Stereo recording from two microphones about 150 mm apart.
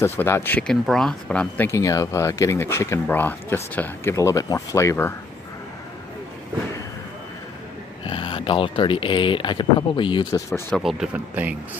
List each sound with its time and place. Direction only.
0.0 s speech: 15° left (ahead or behind)
1.7 s speech: 20° left (ahead or behind)
8.0 s speech: 35° left (ahead or behind)
10.7 s speech: centre (ahead or behind)